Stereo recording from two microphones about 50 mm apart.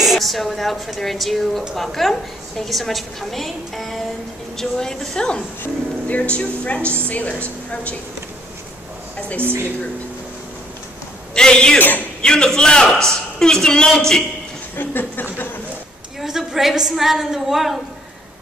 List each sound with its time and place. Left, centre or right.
0.0 s a woman's voice: centre
6.0 s speech: left
9.4 s a woman's voice: right
11.3 s a man's voice: centre
11.8 s a man's voice: left
12.2 s a man's voice: centre
14.8 s speech: left
16.2 s a woman's voice: centre